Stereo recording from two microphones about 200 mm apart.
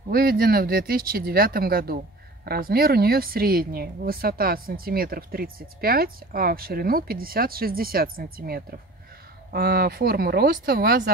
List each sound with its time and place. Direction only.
0.1 s speech: 45° right (ahead or behind)